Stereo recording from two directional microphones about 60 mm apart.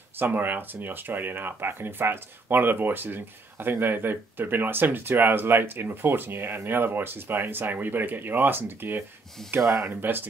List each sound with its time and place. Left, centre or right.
0.2 s speech: right
9.6 s speech: right
9.8 s speech: right